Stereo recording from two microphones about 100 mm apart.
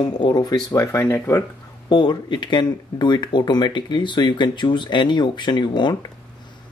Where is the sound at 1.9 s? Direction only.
50° left (ahead or behind).